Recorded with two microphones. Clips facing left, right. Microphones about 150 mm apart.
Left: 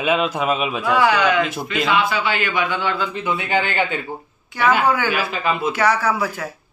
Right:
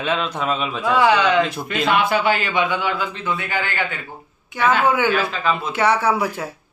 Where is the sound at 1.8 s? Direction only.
55° right (ahead or behind).